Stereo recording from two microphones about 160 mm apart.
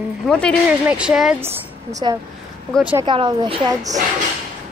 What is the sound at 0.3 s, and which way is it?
Speech, 5° left (ahead or behind).